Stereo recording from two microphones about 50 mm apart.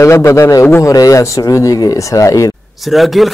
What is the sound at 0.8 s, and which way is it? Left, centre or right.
A man's voice, left.